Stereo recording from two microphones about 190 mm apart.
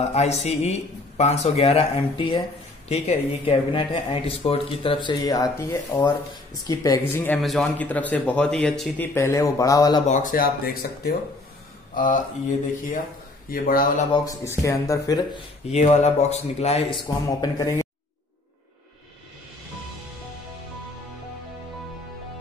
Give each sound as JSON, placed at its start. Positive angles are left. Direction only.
{"t": 0.0, "sound": "a man's voice", "side_deg": 35}
{"t": 7.4, "sound": "speech", "side_deg": 5}
{"t": 10.0, "sound": "speech", "side_deg": 40}
{"t": 14.1, "sound": "speech", "side_deg": 15}
{"t": 15.7, "sound": "a man's voice", "side_deg": 35}
{"t": 17.4, "sound": "speech", "side_deg": 15}